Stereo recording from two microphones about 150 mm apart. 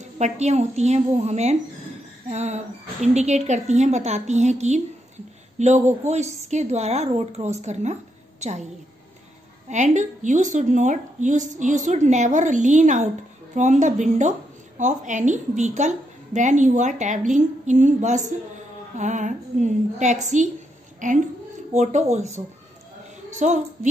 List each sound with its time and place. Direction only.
0.2 s a woman's voice: 50° right (ahead or behind)
9.7 s a woman's voice: 55° right (ahead or behind)